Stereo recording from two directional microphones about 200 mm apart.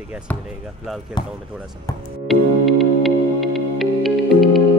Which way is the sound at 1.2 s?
20° left (ahead or behind).